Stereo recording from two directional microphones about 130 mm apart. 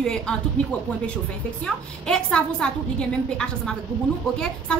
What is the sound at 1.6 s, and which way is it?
A woman's voice, 5° left (ahead or behind).